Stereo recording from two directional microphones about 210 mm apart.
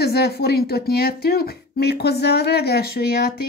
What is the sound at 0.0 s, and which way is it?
Speech, 50° left (ahead or behind).